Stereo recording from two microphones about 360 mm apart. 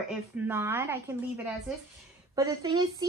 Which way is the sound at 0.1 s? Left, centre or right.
Centre.